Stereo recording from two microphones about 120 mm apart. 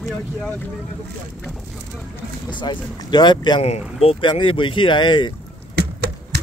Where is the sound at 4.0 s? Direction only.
50° left (ahead or behind).